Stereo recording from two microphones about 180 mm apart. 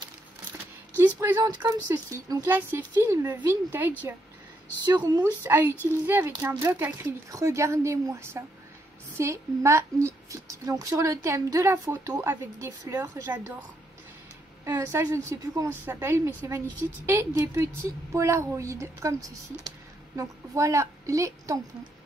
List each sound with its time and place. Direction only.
0.5 s a sound: 10° right (ahead or behind)
1.6 s speech: 15° right (ahead or behind)
14.6 s speech: 15° right (ahead or behind)